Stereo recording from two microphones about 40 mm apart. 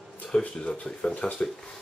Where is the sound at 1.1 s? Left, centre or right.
Left.